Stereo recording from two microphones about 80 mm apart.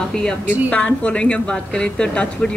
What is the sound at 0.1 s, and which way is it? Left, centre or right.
Speech, centre.